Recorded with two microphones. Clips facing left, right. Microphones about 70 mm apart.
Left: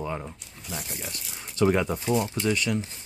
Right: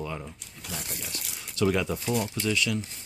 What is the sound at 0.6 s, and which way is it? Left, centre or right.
Speech, right.